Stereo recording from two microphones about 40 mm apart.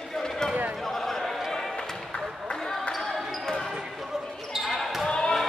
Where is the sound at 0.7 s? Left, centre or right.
Centre.